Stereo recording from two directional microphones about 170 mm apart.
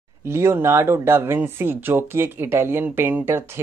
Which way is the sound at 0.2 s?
15° right (ahead or behind).